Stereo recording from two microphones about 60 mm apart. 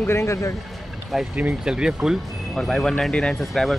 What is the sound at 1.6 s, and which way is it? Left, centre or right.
Speech, centre.